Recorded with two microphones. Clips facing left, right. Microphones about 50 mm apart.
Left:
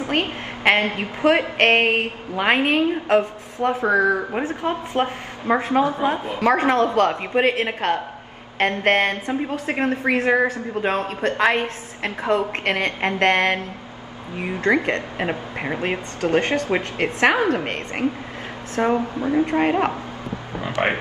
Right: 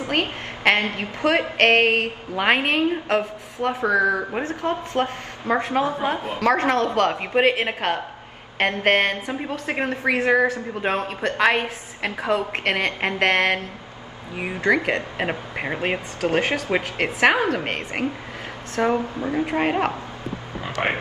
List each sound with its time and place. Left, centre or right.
0.2 s a woman's voice: centre
2.3 s a woman's voice: centre
6.4 s a woman's voice: centre
7.0 s a woman's voice: centre
14.8 s a woman's voice: centre
18.8 s speech: left
19.4 s speech: centre
20.8 s speech: left